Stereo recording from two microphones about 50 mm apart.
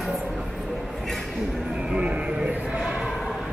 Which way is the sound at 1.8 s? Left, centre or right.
Right.